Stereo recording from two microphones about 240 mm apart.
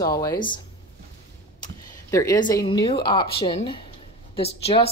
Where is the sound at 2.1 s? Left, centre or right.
Centre.